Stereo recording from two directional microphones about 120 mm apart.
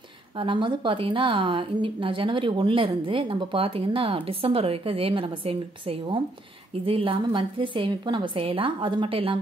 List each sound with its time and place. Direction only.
0.4 s a woman's voice: 45° right (ahead or behind)